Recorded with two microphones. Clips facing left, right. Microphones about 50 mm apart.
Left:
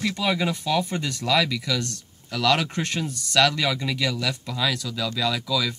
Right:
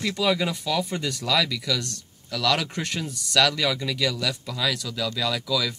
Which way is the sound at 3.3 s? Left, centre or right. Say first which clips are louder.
Left 1 dB; centre.